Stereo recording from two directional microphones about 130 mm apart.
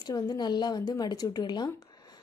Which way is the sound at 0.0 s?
30° left (ahead or behind).